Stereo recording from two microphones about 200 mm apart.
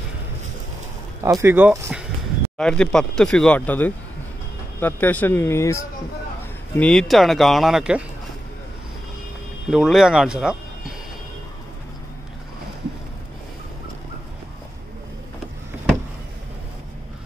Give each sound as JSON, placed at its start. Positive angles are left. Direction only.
{"t": 1.2, "sound": "speech", "side_deg": -15}
{"t": 2.5, "sound": "speech", "side_deg": 5}
{"t": 9.7, "sound": "speech", "side_deg": 0}